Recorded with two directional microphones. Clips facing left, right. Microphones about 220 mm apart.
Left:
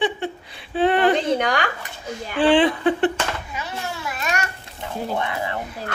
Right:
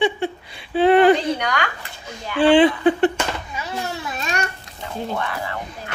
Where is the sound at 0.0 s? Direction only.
Centre (ahead or behind).